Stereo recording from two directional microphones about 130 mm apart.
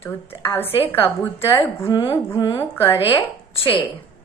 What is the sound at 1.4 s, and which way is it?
A woman's voice, 45° left (ahead or behind).